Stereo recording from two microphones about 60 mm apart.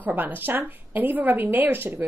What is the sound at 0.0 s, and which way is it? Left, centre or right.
A woman's voice, right.